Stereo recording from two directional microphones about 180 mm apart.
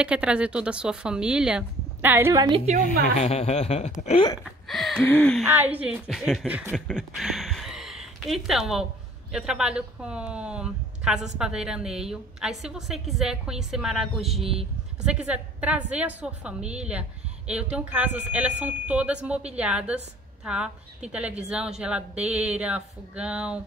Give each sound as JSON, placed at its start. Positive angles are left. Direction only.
{"t": 0.0, "sound": "a woman's voice", "side_deg": -5}
{"t": 2.4, "sound": "a woman's voice", "side_deg": -30}
{"t": 2.8, "sound": "a woman's voice", "side_deg": 40}
{"t": 4.4, "sound": "speech", "side_deg": 0}
{"t": 5.4, "sound": "a woman's voice", "side_deg": -10}